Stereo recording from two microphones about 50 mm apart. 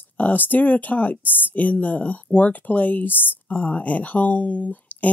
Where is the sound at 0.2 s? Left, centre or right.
Left.